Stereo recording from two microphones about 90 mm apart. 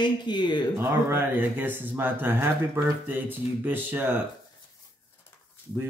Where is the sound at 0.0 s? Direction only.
55° left (ahead or behind).